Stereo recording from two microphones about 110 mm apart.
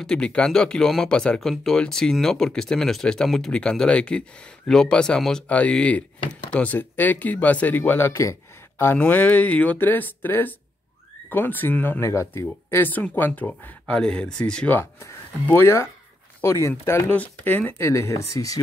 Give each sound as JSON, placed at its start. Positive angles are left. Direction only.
{"t": 0.0, "sound": "speech", "side_deg": 10}
{"t": 8.1, "sound": "a sound", "side_deg": 30}
{"t": 8.9, "sound": "speech", "side_deg": 15}
{"t": 14.8, "sound": "speech", "side_deg": 20}
{"t": 17.1, "sound": "speech", "side_deg": 15}